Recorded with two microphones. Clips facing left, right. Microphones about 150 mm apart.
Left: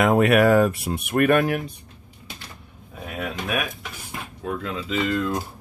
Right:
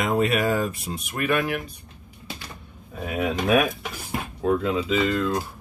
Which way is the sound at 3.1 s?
25° right (ahead or behind).